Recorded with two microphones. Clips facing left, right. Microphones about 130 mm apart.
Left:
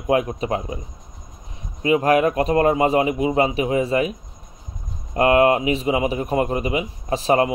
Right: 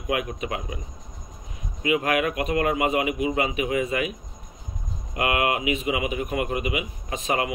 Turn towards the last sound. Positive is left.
turn(degrees=35)  # may be behind; listen again after turning